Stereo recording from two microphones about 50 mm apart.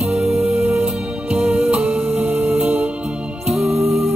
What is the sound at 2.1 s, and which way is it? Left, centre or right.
Music, right.